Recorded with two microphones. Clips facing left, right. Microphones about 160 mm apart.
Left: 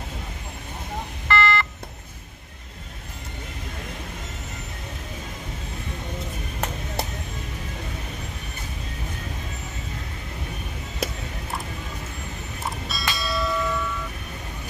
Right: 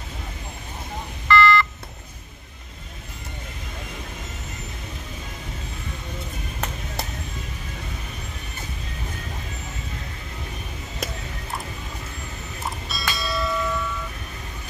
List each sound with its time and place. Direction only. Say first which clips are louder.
1.2 s telephone dialing: right 5 dB; 65° left (ahead or behind)
12.8 s church bell: even; centre (ahead or behind)